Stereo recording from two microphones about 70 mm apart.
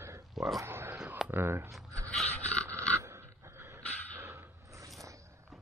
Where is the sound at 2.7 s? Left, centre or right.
Right.